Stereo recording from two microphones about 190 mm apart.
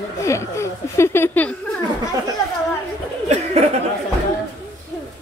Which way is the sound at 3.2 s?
35° right (ahead or behind).